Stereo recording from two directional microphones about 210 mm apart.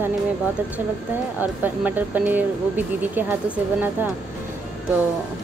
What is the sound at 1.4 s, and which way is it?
Speech, 10° right (ahead or behind).